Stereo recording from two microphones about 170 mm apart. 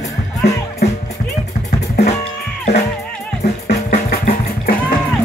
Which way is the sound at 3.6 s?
60° left (ahead or behind).